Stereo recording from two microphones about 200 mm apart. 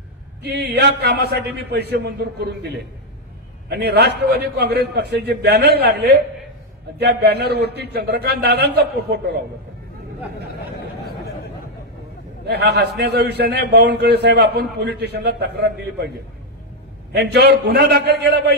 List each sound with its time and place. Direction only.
0.4 s a man's voice: 55° right (ahead or behind)
12.4 s a man's voice: 55° right (ahead or behind)
17.1 s a man's voice: 55° right (ahead or behind)